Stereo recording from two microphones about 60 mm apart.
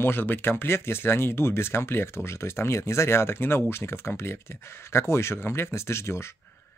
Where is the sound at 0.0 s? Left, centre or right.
Left.